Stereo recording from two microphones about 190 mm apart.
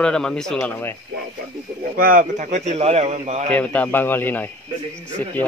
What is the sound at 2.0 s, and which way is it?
A man's voice, 45° right (ahead or behind).